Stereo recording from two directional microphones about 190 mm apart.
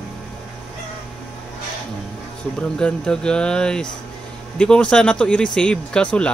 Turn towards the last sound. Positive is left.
turn(degrees=5)  # may be behind; listen again after turning